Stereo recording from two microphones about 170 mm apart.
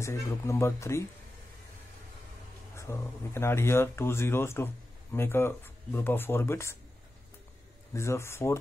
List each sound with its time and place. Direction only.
0.0 s speech: 15° left (ahead or behind)
2.7 s speech: 15° left (ahead or behind)
7.9 s speech: 15° left (ahead or behind)